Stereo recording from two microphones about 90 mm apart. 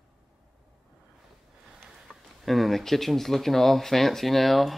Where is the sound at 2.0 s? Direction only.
Centre (ahead or behind).